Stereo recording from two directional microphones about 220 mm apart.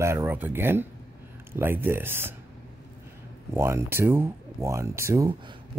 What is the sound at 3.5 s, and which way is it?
Speech, 10° right (ahead or behind).